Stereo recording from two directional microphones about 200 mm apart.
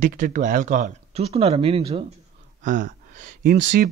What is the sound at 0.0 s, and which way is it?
Speech, 40° right (ahead or behind).